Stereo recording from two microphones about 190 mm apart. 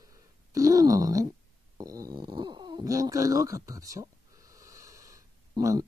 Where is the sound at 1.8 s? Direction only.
20° right (ahead or behind).